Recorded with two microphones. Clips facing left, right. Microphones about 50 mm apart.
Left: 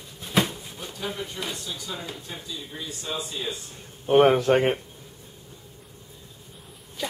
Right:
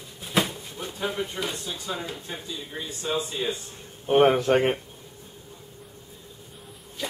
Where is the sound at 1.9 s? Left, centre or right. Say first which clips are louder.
Right 2 dB; centre.